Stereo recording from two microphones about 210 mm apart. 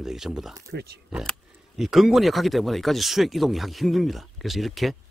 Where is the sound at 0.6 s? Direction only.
50° right (ahead or behind).